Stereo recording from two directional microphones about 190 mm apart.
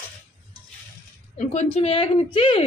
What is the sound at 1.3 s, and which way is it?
Speech, 35° left (ahead or behind).